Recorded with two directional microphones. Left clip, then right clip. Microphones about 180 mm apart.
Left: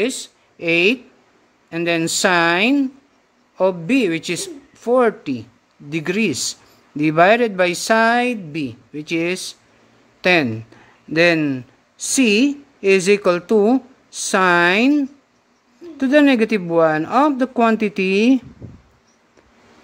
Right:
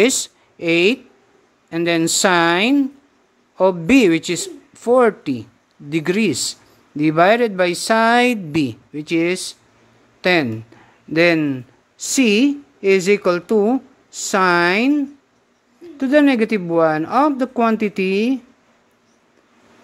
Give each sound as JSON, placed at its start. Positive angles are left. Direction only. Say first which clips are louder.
{"t": 0.0, "sound": "a woman's voice", "louder": "right 6 dB", "side_deg": -25}
{"t": 0.6, "sound": "speech", "louder": "even", "side_deg": -15}
{"t": 3.8, "sound": "a woman's voice", "louder": "right 5 dB", "side_deg": -25}
{"t": 4.2, "sound": "speech", "louder": "right 1 dB", "side_deg": -15}
{"t": 8.9, "sound": "speech", "louder": "right 2 dB", "side_deg": -15}